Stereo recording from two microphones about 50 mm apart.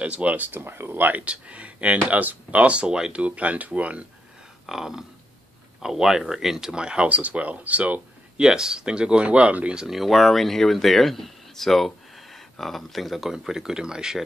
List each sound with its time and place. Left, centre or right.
0.0 s speech: right
0.5 s speech: right
1.2 s speech: right
4.6 s speech: centre
7.1 s speech: right
8.4 s speech: centre
9.8 s speech: centre